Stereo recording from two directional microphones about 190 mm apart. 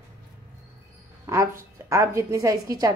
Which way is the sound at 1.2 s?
15° right (ahead or behind).